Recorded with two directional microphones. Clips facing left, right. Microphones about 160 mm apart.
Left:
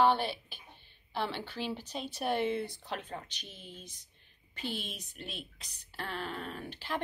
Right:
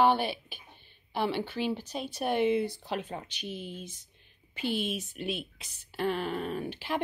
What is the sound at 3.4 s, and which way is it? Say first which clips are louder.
Speech: right 10 dB; 70° right (ahead or behind).